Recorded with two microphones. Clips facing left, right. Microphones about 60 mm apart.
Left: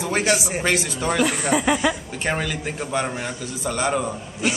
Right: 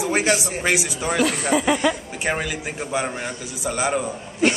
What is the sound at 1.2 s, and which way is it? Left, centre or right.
Speech, centre.